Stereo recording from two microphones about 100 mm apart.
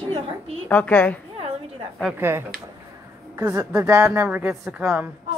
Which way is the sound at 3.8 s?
30° right (ahead or behind).